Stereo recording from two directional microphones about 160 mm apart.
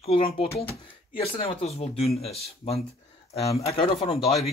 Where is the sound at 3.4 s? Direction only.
20° left (ahead or behind).